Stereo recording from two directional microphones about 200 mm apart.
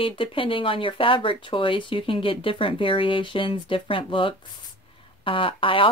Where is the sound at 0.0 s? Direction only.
25° left (ahead or behind).